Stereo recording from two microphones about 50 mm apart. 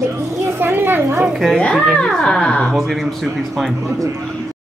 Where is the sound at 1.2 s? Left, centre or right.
Centre.